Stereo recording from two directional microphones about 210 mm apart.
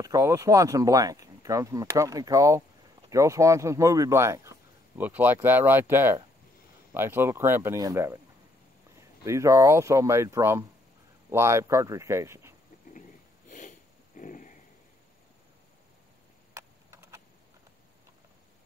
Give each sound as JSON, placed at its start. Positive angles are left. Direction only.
{"t": 0.0, "sound": "speech", "side_deg": -15}
{"t": 9.2, "sound": "speech", "side_deg": -15}
{"t": 13.5, "sound": "sniff", "side_deg": 40}
{"t": 16.5, "sound": "a sound", "side_deg": -15}